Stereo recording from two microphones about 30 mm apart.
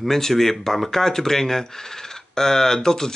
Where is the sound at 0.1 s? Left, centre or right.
Centre.